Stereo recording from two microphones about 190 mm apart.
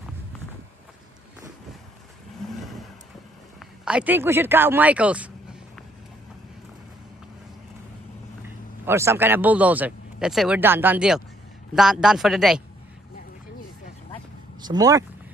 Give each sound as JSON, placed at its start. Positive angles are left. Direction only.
{"t": 2.6, "sound": "vehicle", "side_deg": 0}
{"t": 3.5, "sound": "speech", "side_deg": -5}
{"t": 8.8, "sound": "a man's voice", "side_deg": -15}
{"t": 14.6, "sound": "speech", "side_deg": -20}